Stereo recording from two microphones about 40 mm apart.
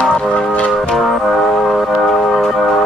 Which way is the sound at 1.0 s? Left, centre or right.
Centre.